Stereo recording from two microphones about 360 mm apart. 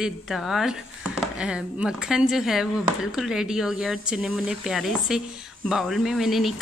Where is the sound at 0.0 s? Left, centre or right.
Centre.